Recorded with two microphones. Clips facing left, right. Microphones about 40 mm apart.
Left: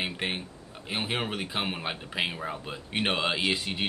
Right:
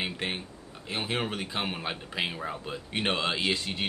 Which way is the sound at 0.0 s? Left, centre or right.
Centre.